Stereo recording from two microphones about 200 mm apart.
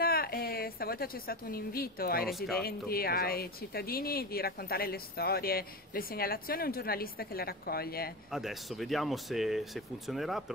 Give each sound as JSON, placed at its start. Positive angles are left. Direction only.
{"t": 0.0, "sound": "a sound", "side_deg": 50}
{"t": 2.2, "sound": "speech", "side_deg": 0}
{"t": 2.6, "sound": "speech", "side_deg": 50}
{"t": 8.3, "sound": "speech", "side_deg": 0}